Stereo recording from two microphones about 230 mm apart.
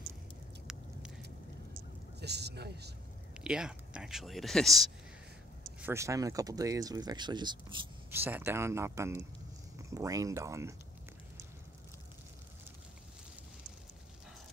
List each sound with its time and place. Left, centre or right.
0.7 s a sound: centre
2.1 s speech: right
3.3 s speech: centre
5.8 s speech: centre